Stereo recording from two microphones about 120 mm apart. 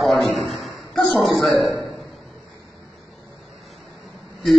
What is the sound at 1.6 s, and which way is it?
Speech, 35° right (ahead or behind).